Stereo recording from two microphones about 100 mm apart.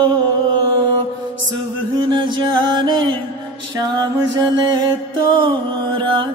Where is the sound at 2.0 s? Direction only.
50° right (ahead or behind).